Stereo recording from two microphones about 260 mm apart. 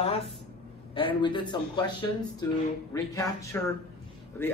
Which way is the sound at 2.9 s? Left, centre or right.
Centre.